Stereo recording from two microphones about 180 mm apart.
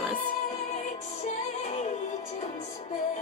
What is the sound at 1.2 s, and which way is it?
Music, 40° left (ahead or behind).